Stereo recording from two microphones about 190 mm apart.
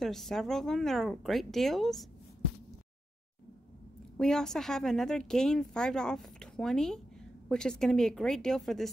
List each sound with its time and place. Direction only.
0.0 s speech: centre (ahead or behind)
4.2 s speech: 5° left (ahead or behind)